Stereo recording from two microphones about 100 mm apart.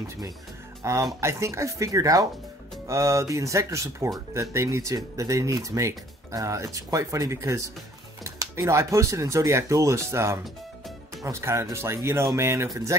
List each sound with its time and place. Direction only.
0.8 s speech: 30° right (ahead or behind)